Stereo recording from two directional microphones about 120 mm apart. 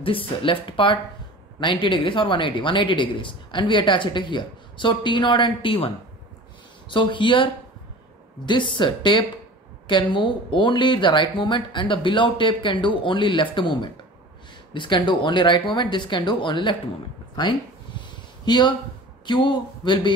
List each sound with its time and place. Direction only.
0.0 s speech: 50° left (ahead or behind)
6.9 s speech: 45° left (ahead or behind)
8.5 s speech: 40° left (ahead or behind)
17.4 s a sound: 40° left (ahead or behind)
19.2 s speech: 40° left (ahead or behind)